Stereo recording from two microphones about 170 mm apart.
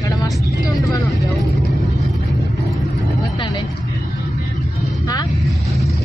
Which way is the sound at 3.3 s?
30° left (ahead or behind).